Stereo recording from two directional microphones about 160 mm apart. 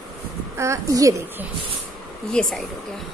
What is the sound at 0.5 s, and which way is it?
Speech, 20° right (ahead or behind).